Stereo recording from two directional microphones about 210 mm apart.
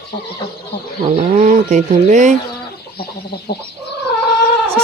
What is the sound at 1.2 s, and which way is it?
Speech, 35° right (ahead or behind).